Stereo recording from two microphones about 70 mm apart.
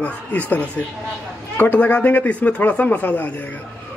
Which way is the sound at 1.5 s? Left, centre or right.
Left.